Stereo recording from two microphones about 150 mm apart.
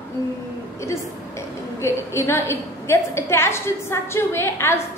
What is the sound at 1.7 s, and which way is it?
A woman's voice, 20° left (ahead or behind).